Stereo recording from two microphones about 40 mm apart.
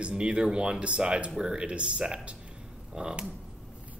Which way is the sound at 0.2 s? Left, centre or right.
Right.